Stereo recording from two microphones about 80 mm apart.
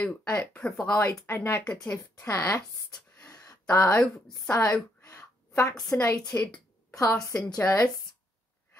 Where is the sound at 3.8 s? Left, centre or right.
Centre.